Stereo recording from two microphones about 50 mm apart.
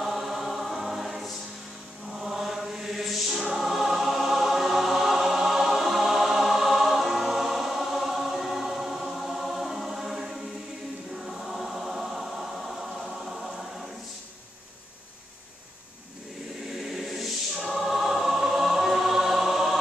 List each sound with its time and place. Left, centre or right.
0.0 s choir: centre
2.0 s music: centre
11.2 s choir: centre
16.8 s choir: centre